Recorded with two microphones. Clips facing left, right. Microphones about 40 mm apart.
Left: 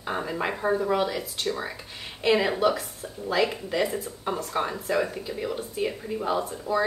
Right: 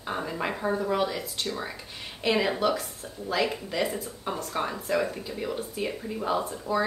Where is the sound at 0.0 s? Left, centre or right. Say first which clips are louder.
Left 2 dB; centre.